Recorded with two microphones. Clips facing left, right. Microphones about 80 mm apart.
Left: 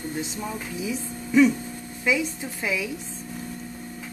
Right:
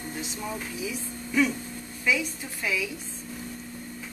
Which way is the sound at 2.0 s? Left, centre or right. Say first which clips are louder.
Left 3 dB; centre.